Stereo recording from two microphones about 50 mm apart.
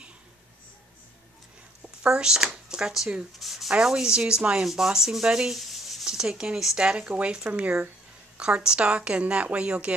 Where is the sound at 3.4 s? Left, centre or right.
Centre.